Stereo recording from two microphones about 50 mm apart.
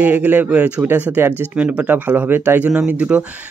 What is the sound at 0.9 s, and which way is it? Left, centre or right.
Speech, right.